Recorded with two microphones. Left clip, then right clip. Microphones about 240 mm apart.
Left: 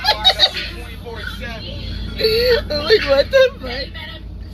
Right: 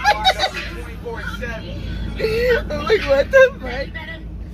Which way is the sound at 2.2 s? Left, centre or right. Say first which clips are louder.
Left 3 dB; centre.